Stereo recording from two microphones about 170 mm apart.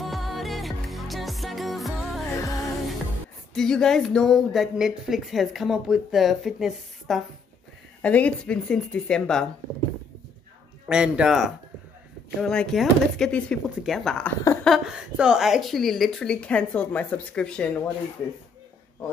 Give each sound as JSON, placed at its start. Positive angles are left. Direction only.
{"t": 0.0, "sound": "music", "side_deg": 0}
{"t": 2.3, "sound": "music", "side_deg": 20}
{"t": 3.5, "sound": "a woman's voice", "side_deg": 5}
{"t": 10.9, "sound": "a woman's voice", "side_deg": -5}